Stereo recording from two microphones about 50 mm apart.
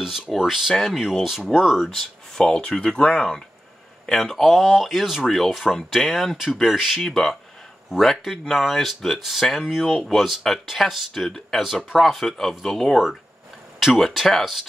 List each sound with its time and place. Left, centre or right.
0.0 s speech: centre
1.9 s speech: centre
13.7 s speech: centre